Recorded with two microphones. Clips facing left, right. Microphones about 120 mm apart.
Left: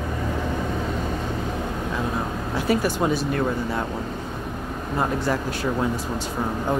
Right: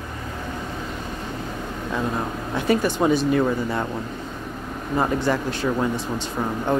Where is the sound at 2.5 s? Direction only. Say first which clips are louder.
Right 1 dB; 5° left (ahead or behind).